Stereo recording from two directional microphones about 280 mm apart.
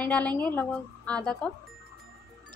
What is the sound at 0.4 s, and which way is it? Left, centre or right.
A woman's voice, centre.